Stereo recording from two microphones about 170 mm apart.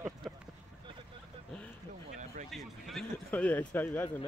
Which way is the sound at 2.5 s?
Centre (ahead or behind).